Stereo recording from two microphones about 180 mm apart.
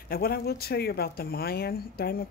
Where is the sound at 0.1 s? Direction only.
60° left (ahead or behind).